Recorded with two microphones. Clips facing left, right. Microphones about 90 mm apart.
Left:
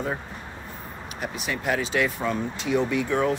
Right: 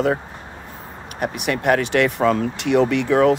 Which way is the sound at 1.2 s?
60° right (ahead or behind).